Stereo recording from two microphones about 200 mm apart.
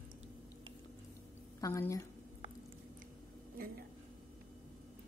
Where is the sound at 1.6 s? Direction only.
15° left (ahead or behind).